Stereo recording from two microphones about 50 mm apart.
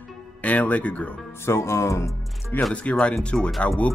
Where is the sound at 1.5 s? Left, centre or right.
Left.